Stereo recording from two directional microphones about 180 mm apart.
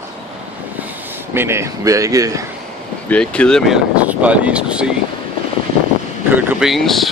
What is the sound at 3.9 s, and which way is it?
Speech, 5° right (ahead or behind).